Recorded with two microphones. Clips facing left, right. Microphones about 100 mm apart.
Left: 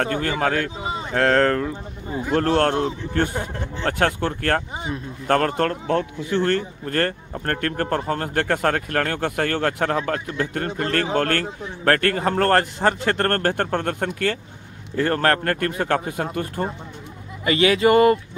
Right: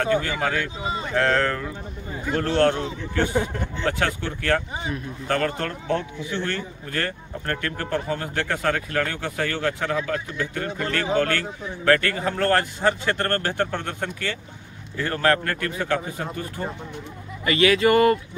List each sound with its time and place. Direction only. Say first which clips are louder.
0.0 s speech: left 1 dB; 50° left (ahead or behind)
17.5 s speech: left 2 dB; 25° left (ahead or behind)